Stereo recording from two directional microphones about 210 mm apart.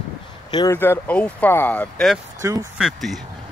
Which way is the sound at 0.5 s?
15° left (ahead or behind).